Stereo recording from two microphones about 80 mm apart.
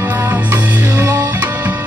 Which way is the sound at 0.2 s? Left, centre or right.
Right.